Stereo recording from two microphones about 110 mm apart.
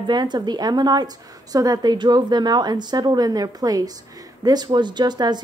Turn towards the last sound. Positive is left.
turn(degrees=-40)  # may be behind; listen again after turning